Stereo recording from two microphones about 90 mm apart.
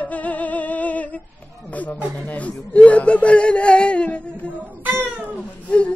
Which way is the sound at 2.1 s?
15° left (ahead or behind).